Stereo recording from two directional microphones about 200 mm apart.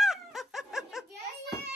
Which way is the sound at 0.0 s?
Centre (ahead or behind).